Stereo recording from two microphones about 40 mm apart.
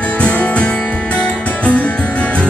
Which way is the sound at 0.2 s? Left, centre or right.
Left.